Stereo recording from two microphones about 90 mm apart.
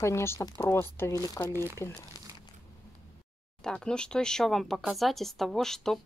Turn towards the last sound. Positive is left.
turn(degrees=5)  # may be behind; listen again after turning